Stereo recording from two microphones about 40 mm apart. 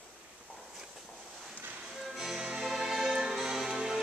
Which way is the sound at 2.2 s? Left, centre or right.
Centre.